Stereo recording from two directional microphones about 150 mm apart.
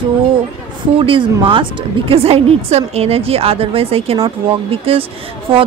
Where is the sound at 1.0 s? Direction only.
35° right (ahead or behind).